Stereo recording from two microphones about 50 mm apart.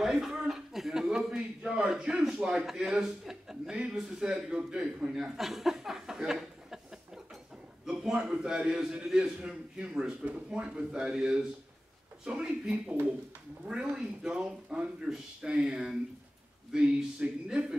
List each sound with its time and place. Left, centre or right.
0.0 s a sound: centre
1.6 s a sound: right
2.0 s a man's voice: centre
7.8 s a man's voice: centre
9.4 s speech: centre
15.1 s speech: right
15.4 s speech: centre